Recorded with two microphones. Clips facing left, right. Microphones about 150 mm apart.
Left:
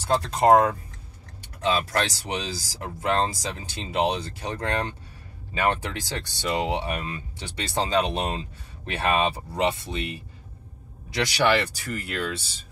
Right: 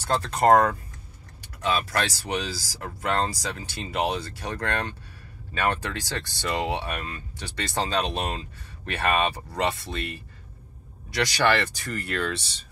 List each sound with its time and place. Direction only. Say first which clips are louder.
0.0 s speech: left 1 dB; 10° left (ahead or behind)
1.6 s speech: left 1 dB; 20° left (ahead or behind)
11.4 s speech: left 2 dB; 10° left (ahead or behind)